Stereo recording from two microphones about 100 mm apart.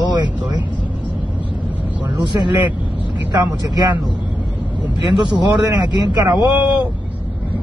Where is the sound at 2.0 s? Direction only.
50° right (ahead or behind).